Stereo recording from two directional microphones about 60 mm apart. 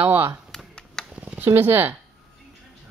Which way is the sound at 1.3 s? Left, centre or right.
Right.